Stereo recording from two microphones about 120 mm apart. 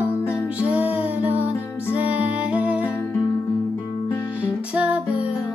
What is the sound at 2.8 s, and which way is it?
Music, 20° left (ahead or behind).